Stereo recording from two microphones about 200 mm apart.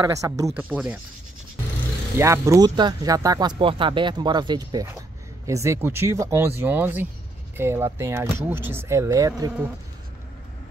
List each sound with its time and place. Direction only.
0.0 s speech: 15° right (ahead or behind)
2.1 s speech: 15° right (ahead or behind)